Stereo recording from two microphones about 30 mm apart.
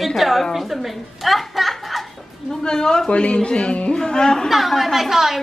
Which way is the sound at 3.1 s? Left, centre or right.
Left.